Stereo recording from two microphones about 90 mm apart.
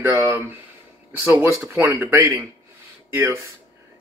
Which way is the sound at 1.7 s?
25° right (ahead or behind).